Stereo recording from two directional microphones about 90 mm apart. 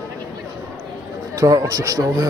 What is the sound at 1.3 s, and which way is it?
Speech, 40° right (ahead or behind).